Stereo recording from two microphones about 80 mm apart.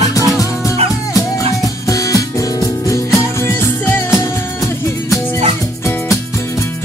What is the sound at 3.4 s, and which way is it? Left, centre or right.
Music, left.